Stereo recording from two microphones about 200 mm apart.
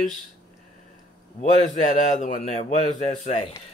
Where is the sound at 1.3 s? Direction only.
40° left (ahead or behind).